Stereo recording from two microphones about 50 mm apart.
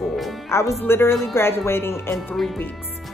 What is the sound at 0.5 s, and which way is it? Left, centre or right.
Speech, left.